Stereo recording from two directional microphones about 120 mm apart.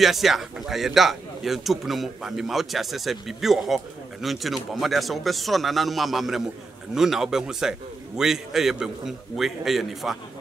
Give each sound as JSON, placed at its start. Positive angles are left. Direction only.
{"t": 0.0, "sound": "a man's voice", "side_deg": 0}